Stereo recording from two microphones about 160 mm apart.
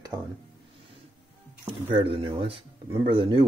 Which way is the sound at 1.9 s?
35° right (ahead or behind).